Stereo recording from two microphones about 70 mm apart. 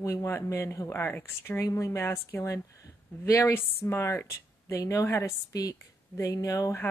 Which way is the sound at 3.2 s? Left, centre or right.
Left.